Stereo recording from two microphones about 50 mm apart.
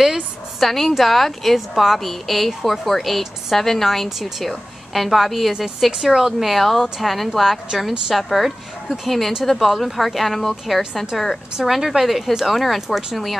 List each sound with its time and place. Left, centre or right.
0.0 s a woman's voice: centre
11.5 s a woman's voice: centre